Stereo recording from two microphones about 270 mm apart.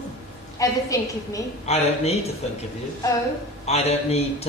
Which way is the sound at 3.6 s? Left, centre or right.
Left.